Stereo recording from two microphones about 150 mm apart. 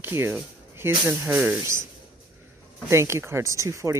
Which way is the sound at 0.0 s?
15° right (ahead or behind).